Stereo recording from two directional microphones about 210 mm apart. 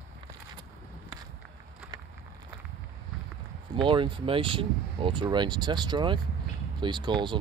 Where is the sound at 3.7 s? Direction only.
20° right (ahead or behind).